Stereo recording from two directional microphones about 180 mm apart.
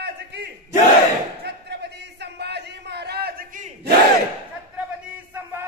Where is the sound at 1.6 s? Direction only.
65° right (ahead or behind).